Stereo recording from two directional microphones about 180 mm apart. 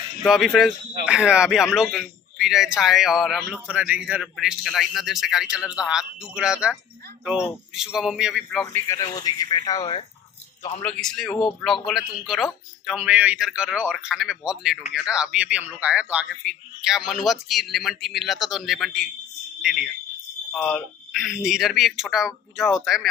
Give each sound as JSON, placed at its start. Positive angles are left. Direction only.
{"t": 0.2, "sound": "a man's voice", "side_deg": 0}
{"t": 8.7, "sound": "a man's voice", "side_deg": 15}
{"t": 10.8, "sound": "a man's voice", "side_deg": 5}